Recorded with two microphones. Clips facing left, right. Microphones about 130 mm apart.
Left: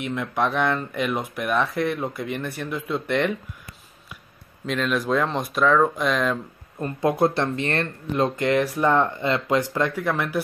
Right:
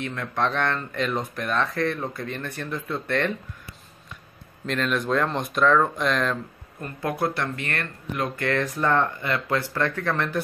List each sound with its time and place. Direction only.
0.0 s speech: 10° left (ahead or behind)
4.6 s speech: 5° left (ahead or behind)
6.8 s speech: 25° left (ahead or behind)